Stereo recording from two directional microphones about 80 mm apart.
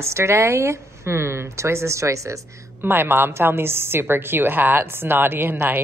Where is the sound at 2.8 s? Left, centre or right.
Right.